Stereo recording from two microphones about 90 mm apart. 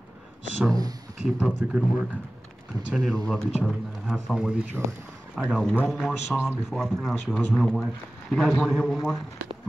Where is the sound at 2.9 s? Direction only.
5° right (ahead or behind).